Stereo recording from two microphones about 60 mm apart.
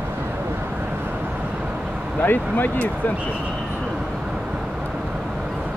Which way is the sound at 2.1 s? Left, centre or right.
Left.